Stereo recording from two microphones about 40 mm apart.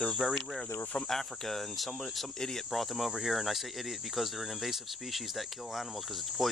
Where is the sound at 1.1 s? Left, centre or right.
Centre.